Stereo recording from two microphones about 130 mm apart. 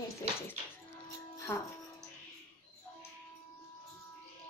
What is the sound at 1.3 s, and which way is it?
Music, 20° left (ahead or behind).